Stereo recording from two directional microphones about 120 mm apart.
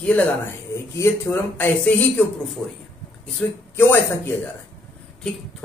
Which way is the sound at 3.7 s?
15° left (ahead or behind).